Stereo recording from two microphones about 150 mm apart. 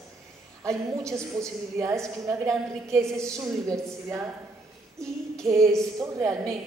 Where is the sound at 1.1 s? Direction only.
20° right (ahead or behind).